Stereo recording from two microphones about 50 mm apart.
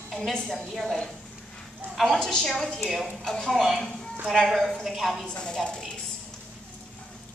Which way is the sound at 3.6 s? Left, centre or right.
Centre.